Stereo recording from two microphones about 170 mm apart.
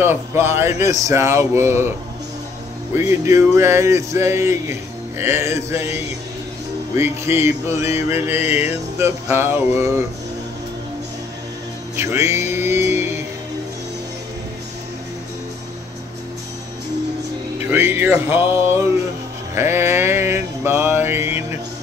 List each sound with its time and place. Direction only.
0.0 s music: 15° right (ahead or behind)
2.9 s music: 15° right (ahead or behind)
7.0 s music: 15° right (ahead or behind)
12.0 s music: 15° right (ahead or behind)
17.6 s music: 10° right (ahead or behind)
19.5 s mantra: 15° right (ahead or behind)